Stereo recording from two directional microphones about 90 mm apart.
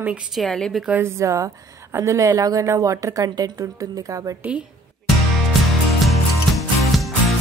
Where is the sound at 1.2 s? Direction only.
35° right (ahead or behind).